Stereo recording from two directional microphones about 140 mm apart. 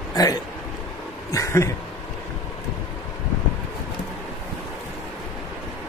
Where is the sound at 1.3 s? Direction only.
20° left (ahead or behind).